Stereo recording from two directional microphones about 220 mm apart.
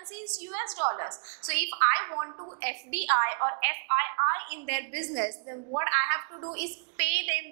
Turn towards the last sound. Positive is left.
turn(degrees=-10)  # may be behind; listen again after turning